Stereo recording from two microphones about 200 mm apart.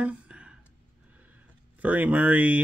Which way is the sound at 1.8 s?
10° right (ahead or behind).